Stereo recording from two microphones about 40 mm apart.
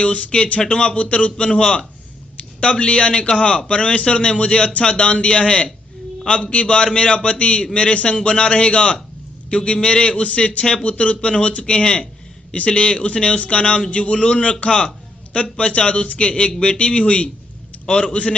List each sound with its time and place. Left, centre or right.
0.0 s a man's voice: left
2.6 s a man's voice: left
10.6 s a man's voice: left
10.9 s a man's voice: left